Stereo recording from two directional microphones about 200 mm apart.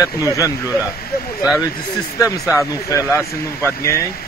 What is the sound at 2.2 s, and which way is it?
Speech, 15° left (ahead or behind).